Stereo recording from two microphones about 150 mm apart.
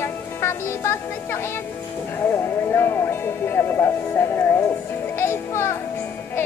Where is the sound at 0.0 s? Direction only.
15° left (ahead or behind).